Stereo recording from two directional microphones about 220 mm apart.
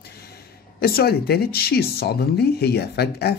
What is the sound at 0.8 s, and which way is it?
Speech, 45° left (ahead or behind).